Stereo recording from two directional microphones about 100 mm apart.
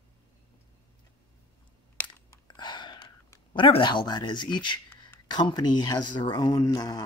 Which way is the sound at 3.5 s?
55° left (ahead or behind).